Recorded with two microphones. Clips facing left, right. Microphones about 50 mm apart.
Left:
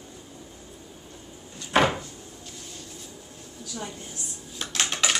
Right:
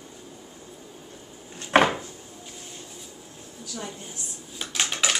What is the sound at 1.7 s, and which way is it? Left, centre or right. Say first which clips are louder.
Cupboard open or close: right 2 dB; right.